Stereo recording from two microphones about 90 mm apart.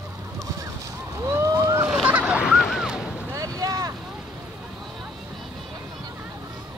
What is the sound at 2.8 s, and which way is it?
Boat, 5° right (ahead or behind).